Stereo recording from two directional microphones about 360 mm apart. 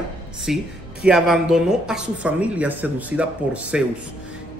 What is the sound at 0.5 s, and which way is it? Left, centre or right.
Speech, centre.